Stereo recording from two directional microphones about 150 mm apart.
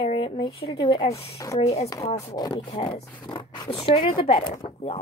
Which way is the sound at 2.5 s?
40° left (ahead or behind).